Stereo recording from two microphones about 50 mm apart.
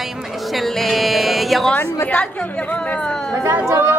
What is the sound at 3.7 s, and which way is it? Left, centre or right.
Speech, right.